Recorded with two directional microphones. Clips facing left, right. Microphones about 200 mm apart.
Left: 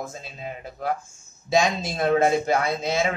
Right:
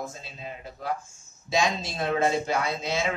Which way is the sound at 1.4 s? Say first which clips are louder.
Left 4 dB; 50° left (ahead or behind).